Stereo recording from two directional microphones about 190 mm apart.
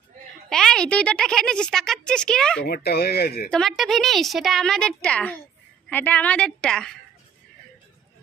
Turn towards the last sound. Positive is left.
turn(degrees=5)  # may be behind; listen again after turning